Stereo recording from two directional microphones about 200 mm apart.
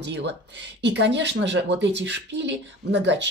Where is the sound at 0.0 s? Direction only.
60° right (ahead or behind).